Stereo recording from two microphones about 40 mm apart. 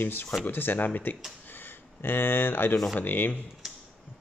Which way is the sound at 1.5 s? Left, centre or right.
Left.